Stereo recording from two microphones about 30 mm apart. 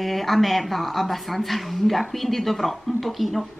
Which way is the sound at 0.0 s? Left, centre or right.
Centre.